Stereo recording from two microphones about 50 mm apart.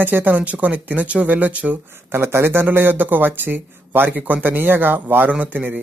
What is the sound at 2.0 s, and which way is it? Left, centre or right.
Speech, right.